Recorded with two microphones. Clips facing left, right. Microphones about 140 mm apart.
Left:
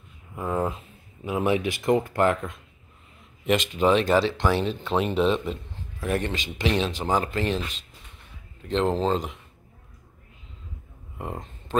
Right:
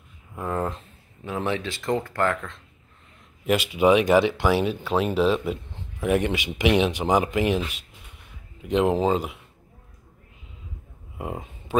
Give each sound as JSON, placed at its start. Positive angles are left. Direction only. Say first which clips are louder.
{"t": 0.4, "sound": "speech", "louder": "left 1 dB", "side_deg": 5}
{"t": 3.4, "sound": "speech", "louder": "right 2 dB", "side_deg": -10}
{"t": 11.1, "sound": "a sound", "louder": "right 2 dB", "side_deg": -10}